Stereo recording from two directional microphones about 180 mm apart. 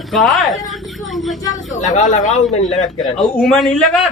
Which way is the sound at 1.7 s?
45° left (ahead or behind).